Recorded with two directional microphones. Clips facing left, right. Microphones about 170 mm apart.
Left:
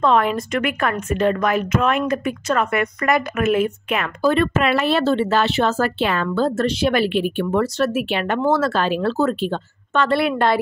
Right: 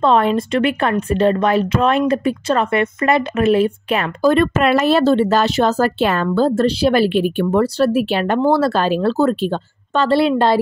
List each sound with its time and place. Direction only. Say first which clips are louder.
0.0 s speech: right 3 dB; 30° right (ahead or behind)